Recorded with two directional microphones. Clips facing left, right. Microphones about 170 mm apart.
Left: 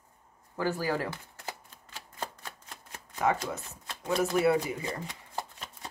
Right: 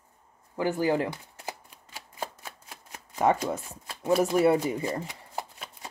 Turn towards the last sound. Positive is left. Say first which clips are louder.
# right 1 dB
turn(degrees=-10)  # may be behind; listen again after turning